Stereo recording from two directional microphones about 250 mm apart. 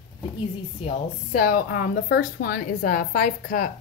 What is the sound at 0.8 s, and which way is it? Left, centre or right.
Speech, left.